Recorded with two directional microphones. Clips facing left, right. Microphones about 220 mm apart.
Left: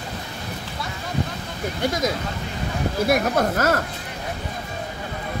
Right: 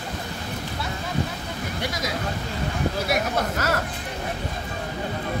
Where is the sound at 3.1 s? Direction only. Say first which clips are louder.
Left 5 dB; 50° left (ahead or behind).